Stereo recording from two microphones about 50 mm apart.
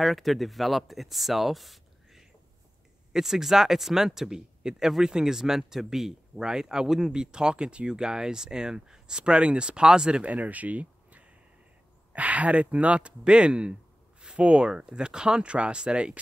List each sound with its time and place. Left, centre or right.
0.0 s speech: centre
10.2 s speech: right